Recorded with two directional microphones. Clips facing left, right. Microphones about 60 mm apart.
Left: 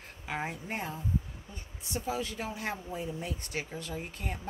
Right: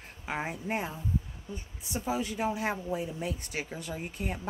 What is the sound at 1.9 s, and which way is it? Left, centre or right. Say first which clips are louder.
Speech: right 3 dB; centre.